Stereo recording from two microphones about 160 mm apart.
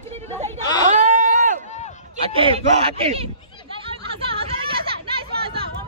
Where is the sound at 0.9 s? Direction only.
50° right (ahead or behind).